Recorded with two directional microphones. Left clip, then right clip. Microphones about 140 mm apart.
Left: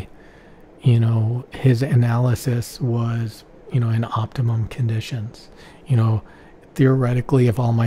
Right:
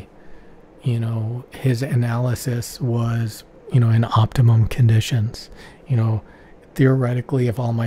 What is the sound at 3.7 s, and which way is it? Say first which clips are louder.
Speech: right 4 dB; 15° right (ahead or behind).